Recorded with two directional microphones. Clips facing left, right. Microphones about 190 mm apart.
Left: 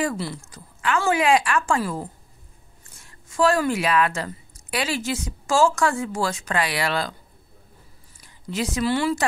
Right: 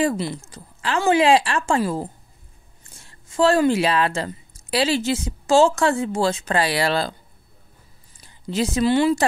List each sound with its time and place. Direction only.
0.0 s a woman's voice: 25° right (ahead or behind)
8.2 s speech: 30° right (ahead or behind)